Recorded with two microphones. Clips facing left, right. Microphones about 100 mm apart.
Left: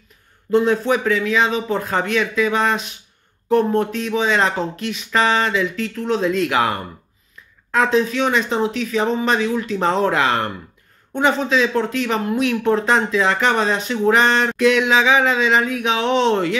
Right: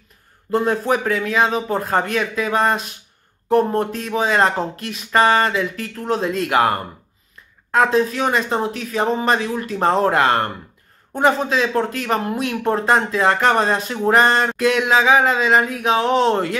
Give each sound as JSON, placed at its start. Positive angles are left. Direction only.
{"t": 0.5, "sound": "speech", "side_deg": -45}